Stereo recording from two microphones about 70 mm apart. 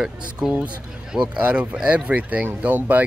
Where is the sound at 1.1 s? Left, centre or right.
Centre.